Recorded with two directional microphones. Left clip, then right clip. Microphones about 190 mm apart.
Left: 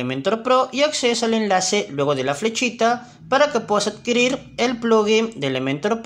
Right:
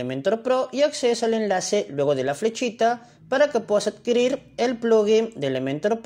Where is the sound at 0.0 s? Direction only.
15° right (ahead or behind).